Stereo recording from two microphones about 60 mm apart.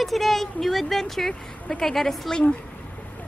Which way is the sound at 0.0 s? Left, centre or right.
Centre.